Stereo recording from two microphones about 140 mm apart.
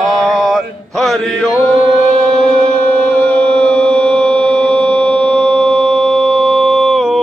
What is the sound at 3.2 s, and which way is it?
Music, 10° left (ahead or behind).